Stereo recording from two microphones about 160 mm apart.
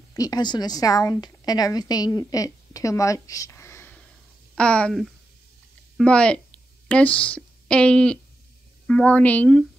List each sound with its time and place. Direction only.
0.1 s a woman's voice: 25° left (ahead or behind)